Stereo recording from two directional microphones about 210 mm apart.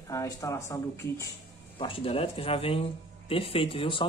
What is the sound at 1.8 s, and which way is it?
Speech, 25° left (ahead or behind).